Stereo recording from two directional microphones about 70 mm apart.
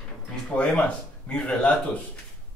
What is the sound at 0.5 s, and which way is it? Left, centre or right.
Speech, centre.